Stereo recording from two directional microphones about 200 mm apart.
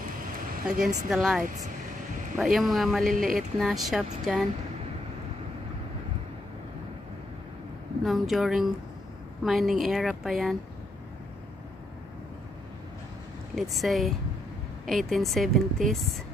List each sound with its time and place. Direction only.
0.7 s a woman's voice: 5° right (ahead or behind)
3.1 s speech: 45° right (ahead or behind)
3.3 s a woman's voice: centre (ahead or behind)
8.0 s a woman's voice: centre (ahead or behind)
13.6 s a woman's voice: centre (ahead or behind)